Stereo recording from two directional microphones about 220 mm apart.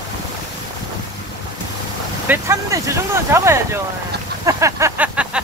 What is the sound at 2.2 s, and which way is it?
Speech, 10° right (ahead or behind).